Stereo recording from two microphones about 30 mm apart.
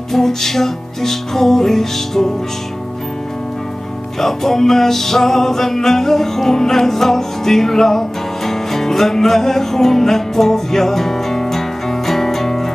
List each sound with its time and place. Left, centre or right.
0.1 s music: centre
4.2 s music: centre